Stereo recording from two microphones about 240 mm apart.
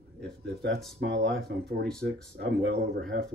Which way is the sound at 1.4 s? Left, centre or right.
Right.